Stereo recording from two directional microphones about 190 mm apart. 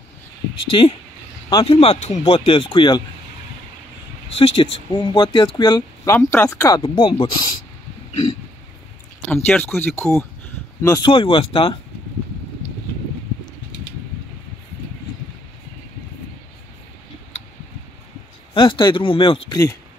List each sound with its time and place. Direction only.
0.7 s speech: 25° left (ahead or behind)
4.4 s speech: 25° left (ahead or behind)
6.1 s speech: 10° left (ahead or behind)
9.3 s speech: 10° left (ahead or behind)
10.8 s speech: 20° left (ahead or behind)
18.5 s speech: 25° left (ahead or behind)